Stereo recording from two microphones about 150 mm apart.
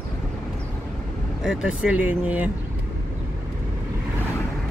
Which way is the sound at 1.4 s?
5° right (ahead or behind).